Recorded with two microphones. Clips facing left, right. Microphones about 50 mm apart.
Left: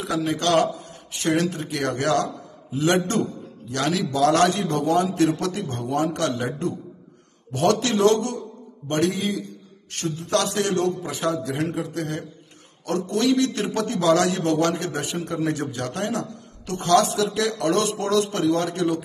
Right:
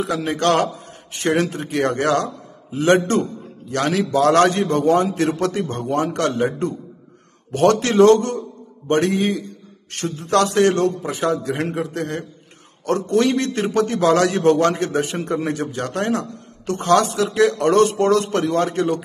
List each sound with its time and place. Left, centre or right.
0.0 s a man's voice: right
4.0 s a man's voice: right